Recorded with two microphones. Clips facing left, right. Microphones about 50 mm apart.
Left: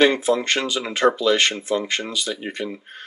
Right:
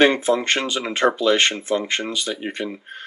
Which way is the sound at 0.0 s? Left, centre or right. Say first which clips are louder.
Right 1 dB; right.